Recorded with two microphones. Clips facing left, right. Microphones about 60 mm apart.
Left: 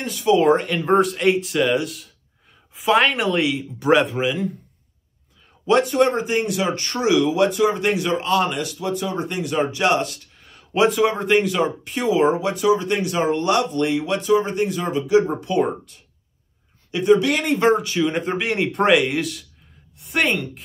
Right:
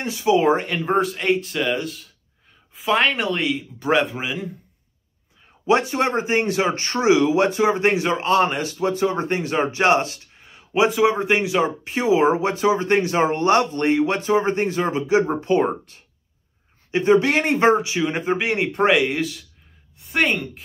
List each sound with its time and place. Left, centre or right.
0.0 s speech: centre
0.4 s speech: centre
5.7 s speech: right
10.4 s speech: centre; by 17.8 s right
17.8 s speech: centre